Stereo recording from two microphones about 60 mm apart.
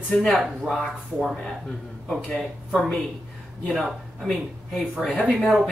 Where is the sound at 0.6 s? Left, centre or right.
Centre.